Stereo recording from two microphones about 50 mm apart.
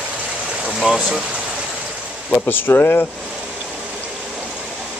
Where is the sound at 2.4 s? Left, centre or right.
Left.